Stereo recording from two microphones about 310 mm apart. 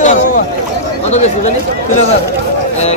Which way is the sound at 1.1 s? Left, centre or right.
Left.